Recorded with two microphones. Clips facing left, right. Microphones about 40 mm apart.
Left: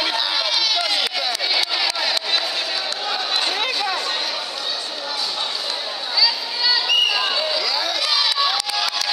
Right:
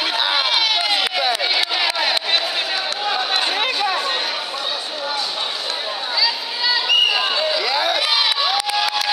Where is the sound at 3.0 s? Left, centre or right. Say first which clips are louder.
Right 3 dB; centre.